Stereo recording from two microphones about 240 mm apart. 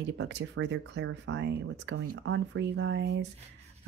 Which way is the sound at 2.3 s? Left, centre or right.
Right.